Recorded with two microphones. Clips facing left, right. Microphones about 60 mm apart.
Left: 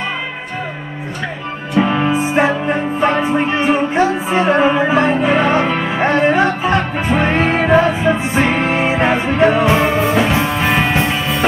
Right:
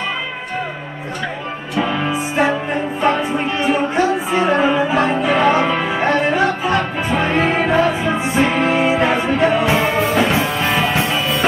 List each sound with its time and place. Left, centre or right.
1.9 s music: left
7.4 s music: centre
8.4 s music: left
9.7 s music: centre